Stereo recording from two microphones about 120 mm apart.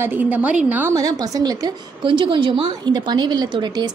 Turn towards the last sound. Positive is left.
turn(degrees=-35)  # may be behind; listen again after turning